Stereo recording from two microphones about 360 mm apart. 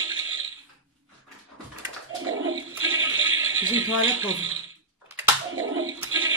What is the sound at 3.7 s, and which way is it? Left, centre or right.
Speech, right.